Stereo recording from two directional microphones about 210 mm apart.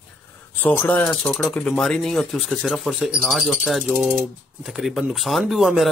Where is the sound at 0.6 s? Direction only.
10° left (ahead or behind).